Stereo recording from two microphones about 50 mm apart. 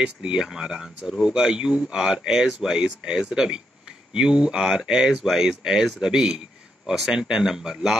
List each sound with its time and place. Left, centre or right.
0.0 s speech: centre